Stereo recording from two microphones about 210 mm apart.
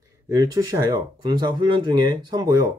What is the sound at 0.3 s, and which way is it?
Speech, 15° right (ahead or behind).